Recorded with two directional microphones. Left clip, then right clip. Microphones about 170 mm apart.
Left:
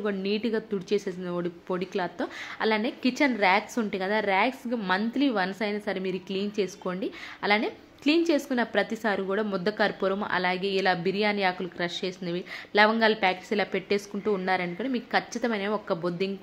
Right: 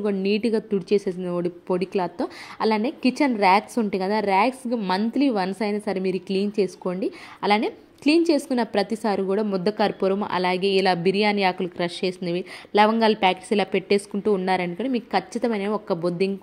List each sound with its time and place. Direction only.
0.0 s a woman's voice: 35° right (ahead or behind)